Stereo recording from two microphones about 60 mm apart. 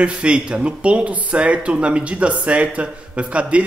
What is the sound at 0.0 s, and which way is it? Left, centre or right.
Speech, centre.